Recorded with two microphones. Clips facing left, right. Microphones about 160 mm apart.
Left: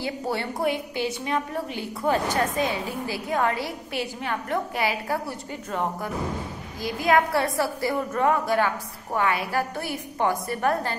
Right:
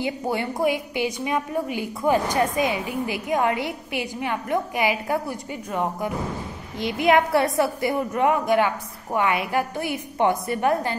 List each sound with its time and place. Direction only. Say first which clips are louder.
0.0 s a woman's voice: right 3 dB; 15° right (ahead or behind)